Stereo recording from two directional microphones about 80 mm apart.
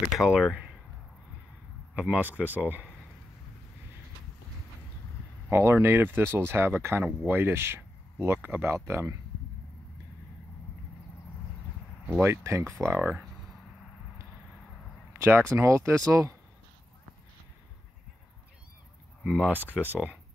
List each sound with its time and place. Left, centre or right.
0.1 s speech: centre
2.0 s speech: centre
5.5 s speech: right
12.2 s speech: right
15.1 s speech: right
19.4 s speech: right